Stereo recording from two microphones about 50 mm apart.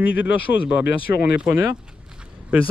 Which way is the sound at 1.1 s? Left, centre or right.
Right.